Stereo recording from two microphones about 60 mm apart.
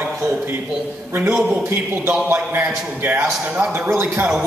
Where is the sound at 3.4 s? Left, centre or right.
Right.